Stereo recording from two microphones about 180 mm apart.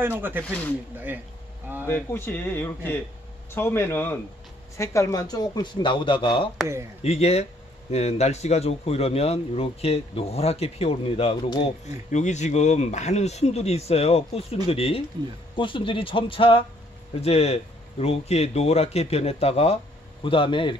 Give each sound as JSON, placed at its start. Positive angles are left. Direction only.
{"t": 0.0, "sound": "speech", "side_deg": -10}
{"t": 0.5, "sound": "speech", "side_deg": 10}
{"t": 0.9, "sound": "speech", "side_deg": -10}
{"t": 1.9, "sound": "a man's voice", "side_deg": 10}